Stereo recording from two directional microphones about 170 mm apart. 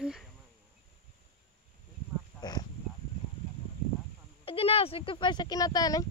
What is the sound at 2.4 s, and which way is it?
Dog, 25° left (ahead or behind).